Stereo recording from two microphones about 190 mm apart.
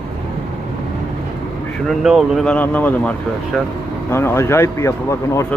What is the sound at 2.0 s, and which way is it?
Speech, centre (ahead or behind).